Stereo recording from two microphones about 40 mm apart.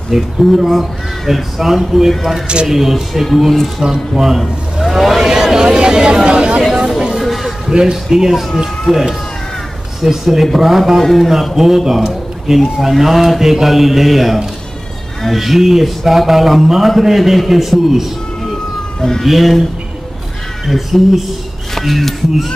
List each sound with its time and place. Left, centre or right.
0.1 s speech: centre
2.4 s speech: right
2.7 s a man's voice: centre; by 6.6 s right
7.2 s a sound: centre
7.7 s speech: centre
18.4 s emergency vehicle: centre
19.2 s speech: centre
20.6 s speech: centre